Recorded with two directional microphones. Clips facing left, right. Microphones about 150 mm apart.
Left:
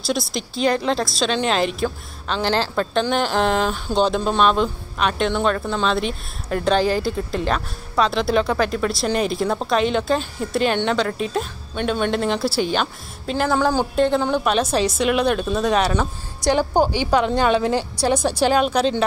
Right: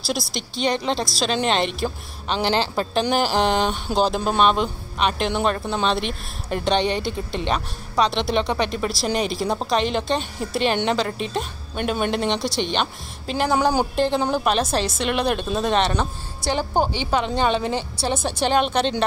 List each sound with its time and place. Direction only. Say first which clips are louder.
0.0 s speech: left 3 dB; centre (ahead or behind)
13.5 s a woman's voice: even; 15° right (ahead or behind)
13.9 s a woman's voice: left 2 dB; centre (ahead or behind)